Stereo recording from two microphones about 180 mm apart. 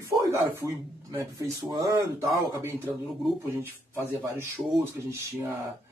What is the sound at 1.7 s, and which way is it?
Speech, 20° right (ahead or behind).